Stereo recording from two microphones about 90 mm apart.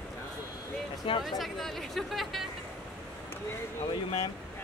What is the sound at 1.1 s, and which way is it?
Speech, 75° left (ahead or behind).